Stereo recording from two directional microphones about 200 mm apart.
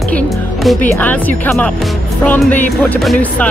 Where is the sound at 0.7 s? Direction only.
10° left (ahead or behind).